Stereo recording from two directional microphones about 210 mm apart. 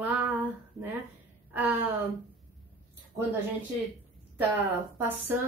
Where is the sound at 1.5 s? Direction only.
10° right (ahead or behind).